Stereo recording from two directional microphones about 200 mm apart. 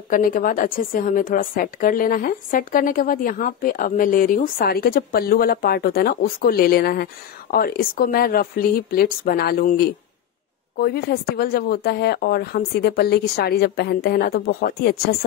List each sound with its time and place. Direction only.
0.1 s a woman's voice: 45° left (ahead or behind)